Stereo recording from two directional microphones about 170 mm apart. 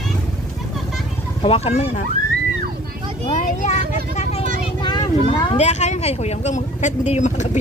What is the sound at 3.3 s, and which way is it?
Vehicle, 45° left (ahead or behind).